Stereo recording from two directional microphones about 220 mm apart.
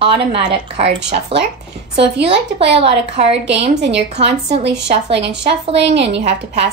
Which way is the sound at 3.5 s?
25° right (ahead or behind).